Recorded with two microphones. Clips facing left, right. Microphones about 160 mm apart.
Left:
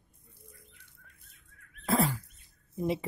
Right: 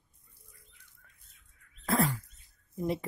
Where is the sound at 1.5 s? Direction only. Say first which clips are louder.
Left 9 dB; 70° left (ahead or behind).